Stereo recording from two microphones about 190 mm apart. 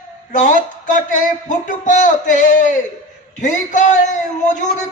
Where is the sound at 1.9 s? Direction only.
40° left (ahead or behind).